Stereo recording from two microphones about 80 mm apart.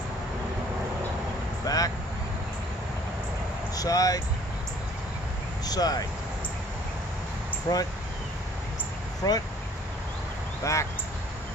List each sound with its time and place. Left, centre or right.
1.7 s vehicle: left
3.7 s speech: left
5.7 s speech: left
7.7 s speech: left
9.2 s speech: left
10.6 s speech: left